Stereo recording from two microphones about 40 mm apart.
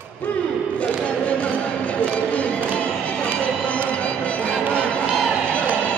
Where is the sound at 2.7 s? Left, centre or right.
Left.